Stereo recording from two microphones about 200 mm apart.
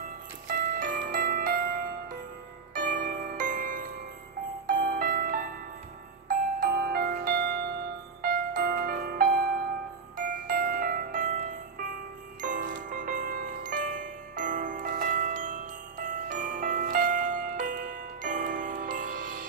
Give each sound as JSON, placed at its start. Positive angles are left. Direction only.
{"t": 0.5, "sound": "music", "side_deg": -40}
{"t": 12.4, "sound": "music", "side_deg": -40}